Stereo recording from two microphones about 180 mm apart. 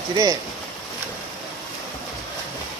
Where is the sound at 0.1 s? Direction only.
20° right (ahead or behind).